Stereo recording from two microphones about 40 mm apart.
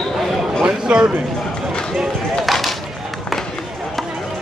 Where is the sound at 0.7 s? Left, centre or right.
Right.